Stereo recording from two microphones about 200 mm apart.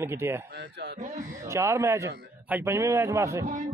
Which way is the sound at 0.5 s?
60° right (ahead or behind).